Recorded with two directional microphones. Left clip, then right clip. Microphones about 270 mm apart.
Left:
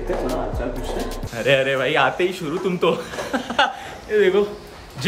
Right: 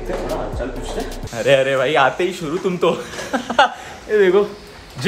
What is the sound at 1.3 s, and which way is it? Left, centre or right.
Speech, centre.